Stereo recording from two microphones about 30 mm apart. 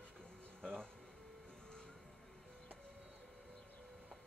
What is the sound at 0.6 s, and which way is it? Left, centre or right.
Music, left.